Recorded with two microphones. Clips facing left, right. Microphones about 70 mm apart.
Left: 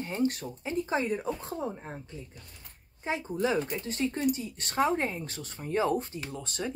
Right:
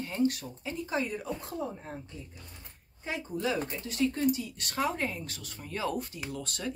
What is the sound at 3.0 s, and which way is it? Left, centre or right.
Speech, left.